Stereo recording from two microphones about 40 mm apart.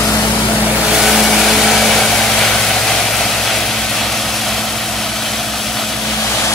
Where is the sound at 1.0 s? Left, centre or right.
Centre.